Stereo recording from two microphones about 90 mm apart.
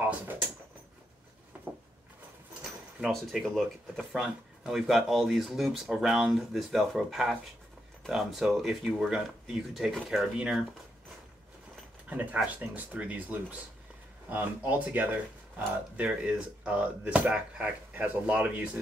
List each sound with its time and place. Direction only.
3.0 s speech: centre (ahead or behind)
12.1 s speech: 15° right (ahead or behind)